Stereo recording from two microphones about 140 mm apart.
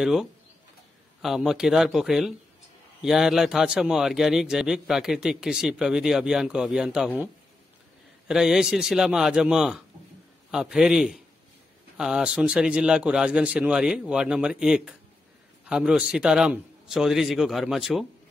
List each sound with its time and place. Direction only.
0.0 s a man's voice: centre (ahead or behind)
8.3 s a man's voice: 5° right (ahead or behind)